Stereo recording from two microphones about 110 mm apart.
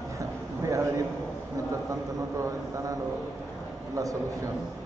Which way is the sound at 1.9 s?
30° right (ahead or behind).